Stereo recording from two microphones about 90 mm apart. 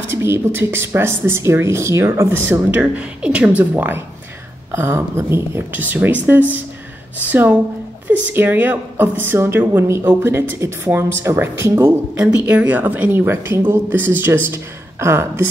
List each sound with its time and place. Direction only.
0.1 s speech: 30° right (ahead or behind)
2.8 s speech: 15° right (ahead or behind)
7.2 s speech: 20° right (ahead or behind)
12.4 s speech: 15° right (ahead or behind)